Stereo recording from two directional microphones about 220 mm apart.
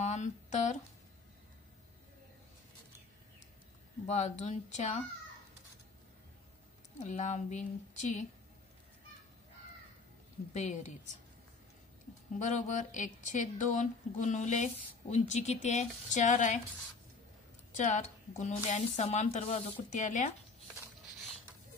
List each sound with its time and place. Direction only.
0.0 s a sound: 30° left (ahead or behind)
4.0 s speech: 30° left (ahead or behind)
7.0 s speech: 35° left (ahead or behind)
10.5 s speech: 35° left (ahead or behind)
12.4 s speech: 35° left (ahead or behind)
17.7 s speech: 35° left (ahead or behind)